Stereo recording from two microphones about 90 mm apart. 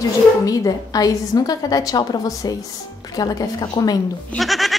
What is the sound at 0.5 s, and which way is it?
A woman's voice, 45° left (ahead or behind).